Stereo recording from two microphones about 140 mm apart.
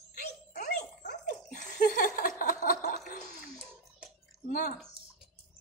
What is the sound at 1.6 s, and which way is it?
Laughter, 65° left (ahead or behind).